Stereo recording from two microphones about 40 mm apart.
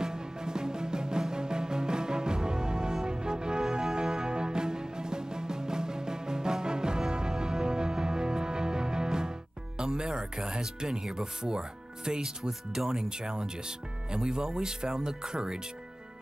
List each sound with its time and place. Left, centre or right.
0.0 s music: centre
9.8 s speech: centre